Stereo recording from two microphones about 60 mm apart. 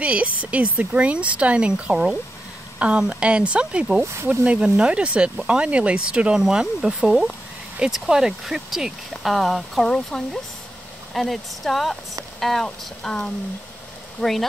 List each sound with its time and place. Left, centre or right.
0.0 s speech: right
3.0 s speech: centre
4.0 s speech: right
4.6 s speech: centre
4.8 s speech: centre
7.1 s speech: centre